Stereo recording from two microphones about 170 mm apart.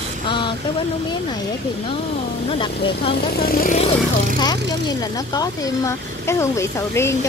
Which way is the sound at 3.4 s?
60° left (ahead or behind).